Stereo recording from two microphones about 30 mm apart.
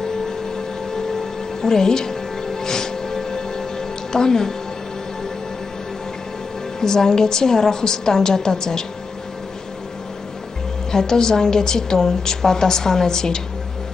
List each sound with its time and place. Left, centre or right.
0.9 s music: centre
6.8 s a woman's voice: centre
10.9 s a woman's voice: centre